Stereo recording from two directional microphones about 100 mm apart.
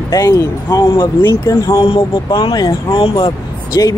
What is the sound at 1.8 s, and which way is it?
Speech, 55° left (ahead or behind).